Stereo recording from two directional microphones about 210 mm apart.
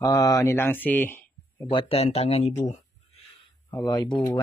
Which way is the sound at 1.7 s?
25° left (ahead or behind).